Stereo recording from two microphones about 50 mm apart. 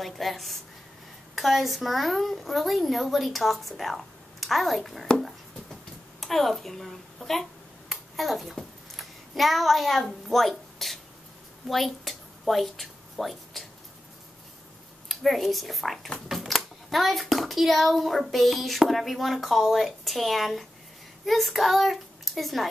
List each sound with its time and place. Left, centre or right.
0.0 s a child's voice: centre
6.2 s speech: centre
7.9 s finger snapping: centre
8.5 s a woman's voice: centre
11.7 s a sound: centre
15.0 s a child's voice: centre